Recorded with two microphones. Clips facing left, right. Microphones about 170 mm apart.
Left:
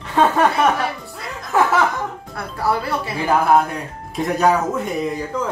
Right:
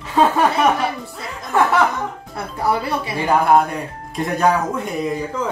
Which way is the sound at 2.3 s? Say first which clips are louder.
Right 1 dB; 20° right (ahead or behind).